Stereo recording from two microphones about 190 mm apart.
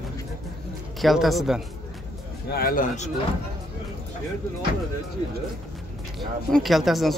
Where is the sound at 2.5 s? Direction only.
50° left (ahead or behind).